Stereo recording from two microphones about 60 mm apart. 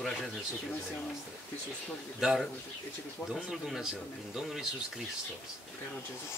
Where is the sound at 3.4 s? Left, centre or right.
Centre.